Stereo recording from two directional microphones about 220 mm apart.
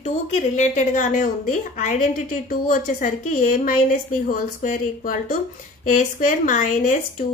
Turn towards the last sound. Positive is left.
turn(degrees=35)  # may be behind; listen again after turning